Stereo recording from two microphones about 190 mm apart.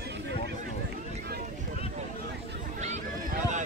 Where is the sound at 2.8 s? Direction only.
40° right (ahead or behind).